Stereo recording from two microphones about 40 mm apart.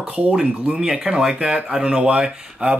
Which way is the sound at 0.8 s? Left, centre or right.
Right.